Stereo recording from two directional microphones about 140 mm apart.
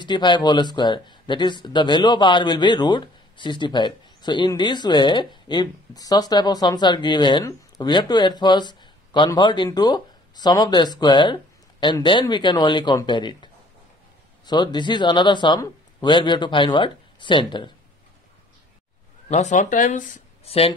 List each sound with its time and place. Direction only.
0.0 s speech: 35° left (ahead or behind)
19.2 s speech: 55° left (ahead or behind)
20.4 s speech: 45° left (ahead or behind)